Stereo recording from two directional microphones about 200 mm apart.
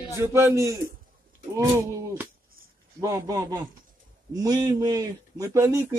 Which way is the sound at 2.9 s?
15° right (ahead or behind).